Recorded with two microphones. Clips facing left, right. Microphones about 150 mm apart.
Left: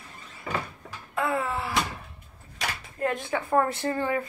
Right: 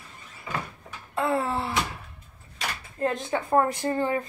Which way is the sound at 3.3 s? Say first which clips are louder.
Right 2 dB; 20° right (ahead or behind).